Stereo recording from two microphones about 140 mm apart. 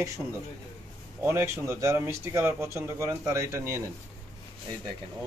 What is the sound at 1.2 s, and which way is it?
Speech, 20° right (ahead or behind).